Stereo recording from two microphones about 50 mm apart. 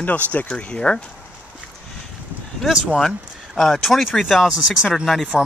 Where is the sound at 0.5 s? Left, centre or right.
Centre.